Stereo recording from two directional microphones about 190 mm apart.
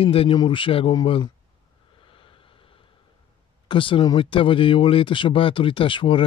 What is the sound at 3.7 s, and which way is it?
Speech, 25° left (ahead or behind).